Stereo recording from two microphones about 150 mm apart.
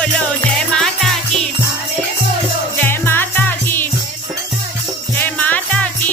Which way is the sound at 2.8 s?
15° left (ahead or behind).